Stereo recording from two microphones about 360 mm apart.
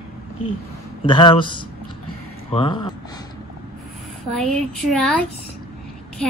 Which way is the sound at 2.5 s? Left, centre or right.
Centre.